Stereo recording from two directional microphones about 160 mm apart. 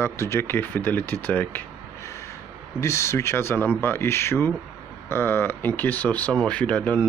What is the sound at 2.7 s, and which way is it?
Speech, 15° left (ahead or behind).